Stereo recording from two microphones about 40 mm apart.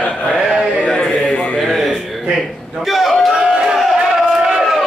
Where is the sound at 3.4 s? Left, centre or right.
Centre.